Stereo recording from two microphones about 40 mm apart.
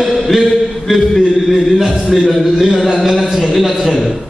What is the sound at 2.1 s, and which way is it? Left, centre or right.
Speech, centre.